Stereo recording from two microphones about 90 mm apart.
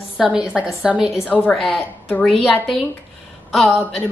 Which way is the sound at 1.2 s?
15° left (ahead or behind).